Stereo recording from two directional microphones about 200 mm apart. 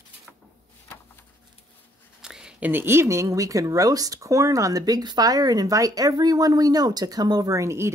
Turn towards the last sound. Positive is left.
turn(degrees=-15)  # may be behind; listen again after turning